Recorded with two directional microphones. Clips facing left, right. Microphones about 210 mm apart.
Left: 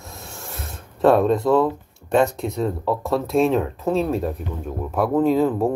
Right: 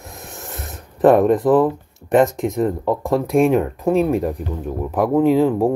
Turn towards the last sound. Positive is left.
turn(degrees=-15)  # may be behind; listen again after turning